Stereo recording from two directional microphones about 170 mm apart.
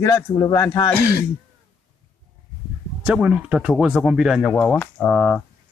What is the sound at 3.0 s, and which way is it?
Speech, 5° right (ahead or behind).